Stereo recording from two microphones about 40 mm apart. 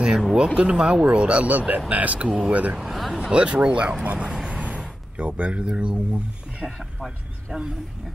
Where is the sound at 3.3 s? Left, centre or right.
Right.